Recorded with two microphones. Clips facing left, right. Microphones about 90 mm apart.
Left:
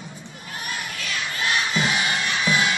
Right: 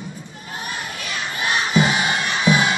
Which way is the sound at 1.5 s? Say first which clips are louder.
Right 5 dB; 25° right (ahead or behind).